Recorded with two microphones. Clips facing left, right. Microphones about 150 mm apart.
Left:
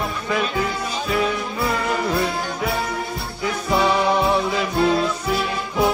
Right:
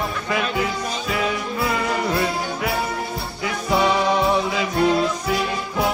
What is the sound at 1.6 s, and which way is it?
Music, centre (ahead or behind).